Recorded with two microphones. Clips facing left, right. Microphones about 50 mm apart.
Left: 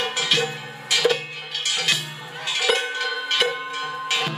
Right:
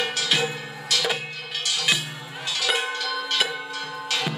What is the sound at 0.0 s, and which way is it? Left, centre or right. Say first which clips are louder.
Music: left 1 dB; left.